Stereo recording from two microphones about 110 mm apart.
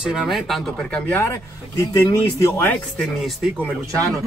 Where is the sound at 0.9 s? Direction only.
20° left (ahead or behind).